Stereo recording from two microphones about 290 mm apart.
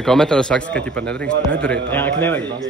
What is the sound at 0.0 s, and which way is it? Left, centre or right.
A man's voice, centre.